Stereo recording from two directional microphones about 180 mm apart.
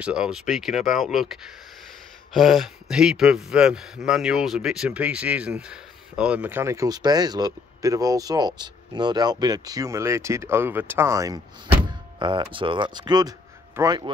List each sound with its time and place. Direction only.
0.0 s speech: 5° right (ahead or behind); by 14.1 s 20° right (ahead or behind)